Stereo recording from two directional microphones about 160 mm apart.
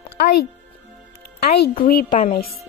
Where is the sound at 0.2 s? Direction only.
90° left.